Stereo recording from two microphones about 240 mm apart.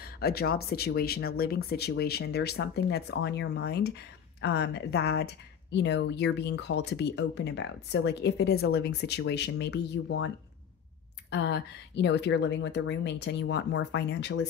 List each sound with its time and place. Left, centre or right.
0.0 s a woman's voice: left